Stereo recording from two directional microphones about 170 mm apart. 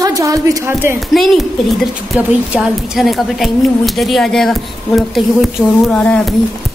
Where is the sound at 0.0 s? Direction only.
20° right (ahead or behind).